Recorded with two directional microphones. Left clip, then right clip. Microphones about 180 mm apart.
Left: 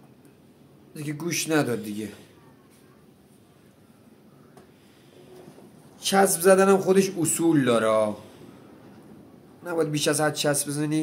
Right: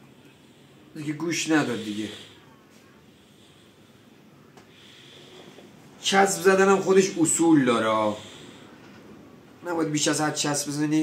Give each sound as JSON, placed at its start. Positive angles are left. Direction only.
{"t": 0.9, "sound": "speech", "side_deg": 40}
{"t": 6.0, "sound": "a man's voice", "side_deg": 55}
{"t": 9.7, "sound": "speech", "side_deg": 35}